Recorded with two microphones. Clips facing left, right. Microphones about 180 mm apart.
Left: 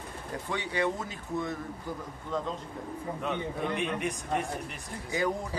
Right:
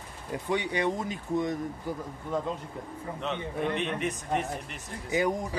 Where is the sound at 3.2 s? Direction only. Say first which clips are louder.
Right 2 dB; 5° left (ahead or behind).